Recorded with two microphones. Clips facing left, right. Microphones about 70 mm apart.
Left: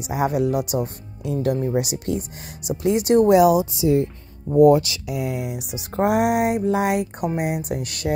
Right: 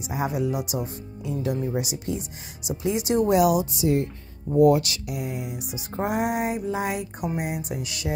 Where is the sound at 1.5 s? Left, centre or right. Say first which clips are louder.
Left 5 dB; left.